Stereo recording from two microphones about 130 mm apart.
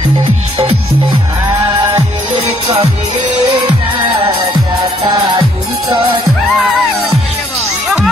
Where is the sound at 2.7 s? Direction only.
55° right (ahead or behind).